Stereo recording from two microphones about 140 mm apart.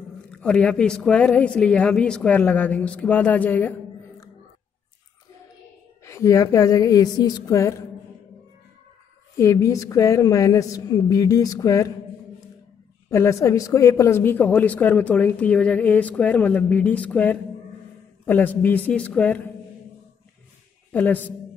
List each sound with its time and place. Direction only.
0.3 s a woman's voice: 10° left (ahead or behind)
6.0 s a woman's voice: 20° left (ahead or behind)
9.4 s a woman's voice: 20° left (ahead or behind)
13.1 s a woman's voice: 20° left (ahead or behind)
20.9 s a woman's voice: 10° left (ahead or behind)